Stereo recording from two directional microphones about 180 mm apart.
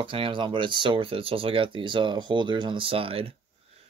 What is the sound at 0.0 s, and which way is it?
Speech, 30° right (ahead or behind).